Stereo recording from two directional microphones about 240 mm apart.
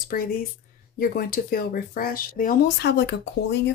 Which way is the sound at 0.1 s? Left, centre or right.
Left.